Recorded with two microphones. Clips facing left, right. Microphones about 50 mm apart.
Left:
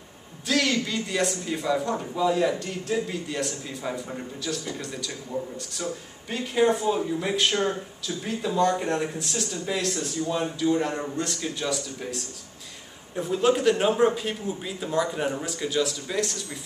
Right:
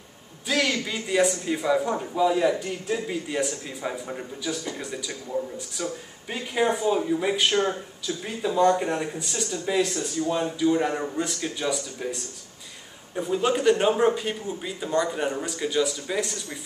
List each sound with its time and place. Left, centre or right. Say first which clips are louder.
0.5 s a man's voice: even; centre
7.5 s speech: right 2 dB; right
8.2 s speech: right 2 dB; centre